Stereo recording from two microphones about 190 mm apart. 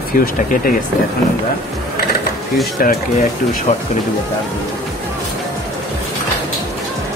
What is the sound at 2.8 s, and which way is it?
Speech, 50° left (ahead or behind).